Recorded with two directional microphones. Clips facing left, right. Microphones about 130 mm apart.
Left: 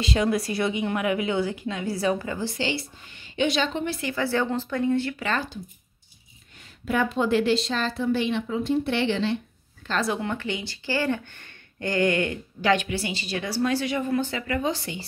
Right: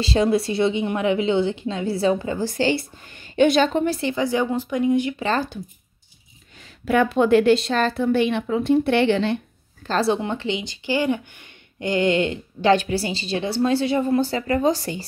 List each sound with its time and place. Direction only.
0.0 s speech: 30° right (ahead or behind)
2.4 s a woman's voice: 45° right (ahead or behind)
4.0 s a woman's voice: 20° right (ahead or behind)
5.2 s speech: 35° right (ahead or behind)
6.9 s speech: 65° right (ahead or behind)
9.8 s speech: 30° right (ahead or behind)